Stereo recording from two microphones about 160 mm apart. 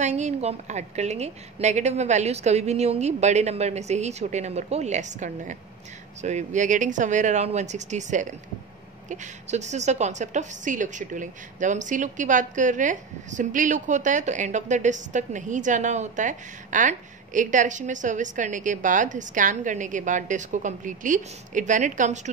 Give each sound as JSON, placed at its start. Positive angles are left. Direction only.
{"t": 0.0, "sound": "a woman's voice", "side_deg": -45}